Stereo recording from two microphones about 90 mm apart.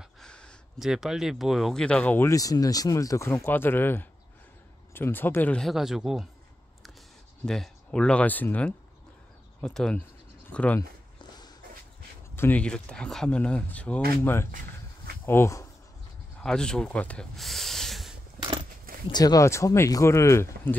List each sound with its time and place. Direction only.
0.2 s a sound: 10° left (ahead or behind)
0.7 s speech: 5° right (ahead or behind); by 2.1 s 10° left (ahead or behind)
2.3 s speech: 40° left (ahead or behind); by 5.6 s 20° left (ahead or behind)
5.6 s speech: centre (ahead or behind)
7.4 s speech: 5° left (ahead or behind)
12.4 s speech: 20° left (ahead or behind)
12.6 s speech: 10° left (ahead or behind)
14.2 s speech: 25° left (ahead or behind)
16.4 s speech: 10° left (ahead or behind)
17.4 s a sound: centre (ahead or behind)
19.1 s speech: 45° left (ahead or behind)
19.4 s speech: 30° left (ahead or behind)